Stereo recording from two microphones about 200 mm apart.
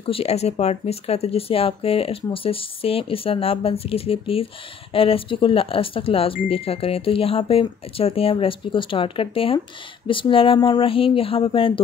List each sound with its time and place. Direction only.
0.0 s speech: 30° left (ahead or behind)